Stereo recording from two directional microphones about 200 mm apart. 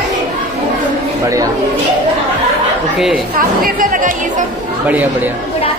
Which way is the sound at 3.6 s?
45° right (ahead or behind).